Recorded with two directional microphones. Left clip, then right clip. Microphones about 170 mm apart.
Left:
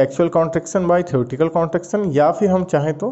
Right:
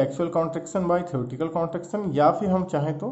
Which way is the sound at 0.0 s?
25° left (ahead or behind).